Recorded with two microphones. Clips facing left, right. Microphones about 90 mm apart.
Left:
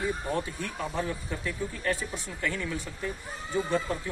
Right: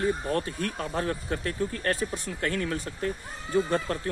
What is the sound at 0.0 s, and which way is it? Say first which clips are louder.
Speech: right 3 dB; 60° right (ahead or behind).